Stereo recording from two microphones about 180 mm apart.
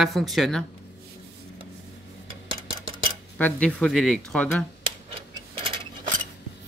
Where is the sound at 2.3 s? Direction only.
30° right (ahead or behind).